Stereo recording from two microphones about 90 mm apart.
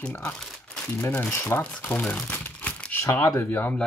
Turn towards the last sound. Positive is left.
turn(degrees=25)  # may be behind; listen again after turning